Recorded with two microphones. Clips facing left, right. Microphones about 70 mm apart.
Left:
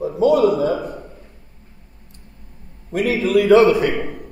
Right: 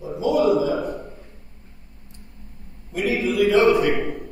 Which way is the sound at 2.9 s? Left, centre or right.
Left.